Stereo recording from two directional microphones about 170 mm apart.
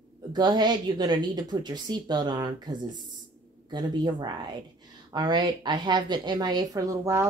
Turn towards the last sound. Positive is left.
turn(degrees=-20)  # may be behind; listen again after turning